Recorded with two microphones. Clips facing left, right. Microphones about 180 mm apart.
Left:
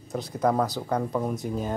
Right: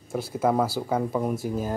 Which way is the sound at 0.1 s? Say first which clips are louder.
Right 1 dB; 5° right (ahead or behind).